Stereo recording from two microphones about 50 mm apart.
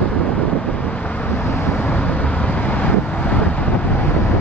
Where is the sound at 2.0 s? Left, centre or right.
Left.